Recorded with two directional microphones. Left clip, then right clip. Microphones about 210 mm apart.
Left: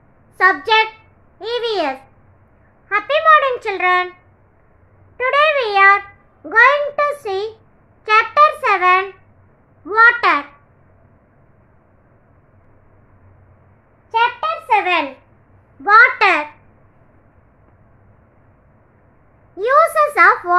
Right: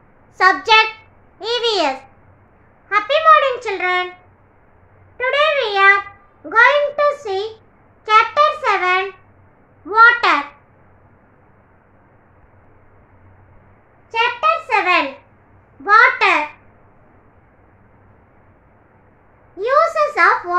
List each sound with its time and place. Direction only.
0.4 s a child's voice: 5° left (ahead or behind)
1.4 s babbling: 5° left (ahead or behind)
2.9 s a sound: 5° left (ahead or behind)
5.1 s a child's voice: 10° left (ahead or behind)
8.0 s a sound: 10° left (ahead or behind)
9.8 s a child's voice: 10° left (ahead or behind)
14.1 s a sound: 5° right (ahead or behind)
15.8 s a child's voice: 10° left (ahead or behind)
19.5 s a child's voice: 15° left (ahead or behind)